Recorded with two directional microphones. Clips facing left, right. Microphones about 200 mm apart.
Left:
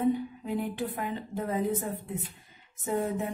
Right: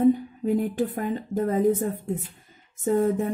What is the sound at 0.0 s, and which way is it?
Speech, 45° right (ahead or behind).